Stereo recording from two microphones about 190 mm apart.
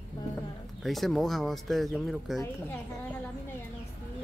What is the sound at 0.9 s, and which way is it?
Speech, centre (ahead or behind).